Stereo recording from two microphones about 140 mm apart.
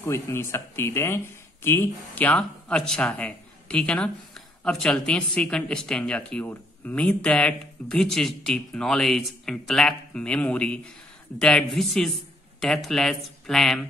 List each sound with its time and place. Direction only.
0.0 s speech: 20° left (ahead or behind); by 13.8 s 5° left (ahead or behind)